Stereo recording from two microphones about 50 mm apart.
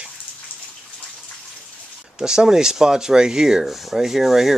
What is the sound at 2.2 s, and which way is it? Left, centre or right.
Rub, centre.